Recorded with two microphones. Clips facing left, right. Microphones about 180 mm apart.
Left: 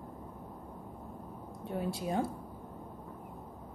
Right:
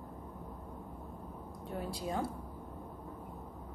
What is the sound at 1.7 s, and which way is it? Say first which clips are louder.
Speech: left 4 dB; 25° left (ahead or behind).